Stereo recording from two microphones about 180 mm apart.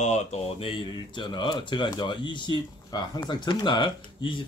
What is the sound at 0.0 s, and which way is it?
Speech, 40° left (ahead or behind).